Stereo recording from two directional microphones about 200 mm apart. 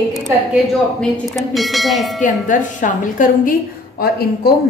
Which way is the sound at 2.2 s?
40° left (ahead or behind).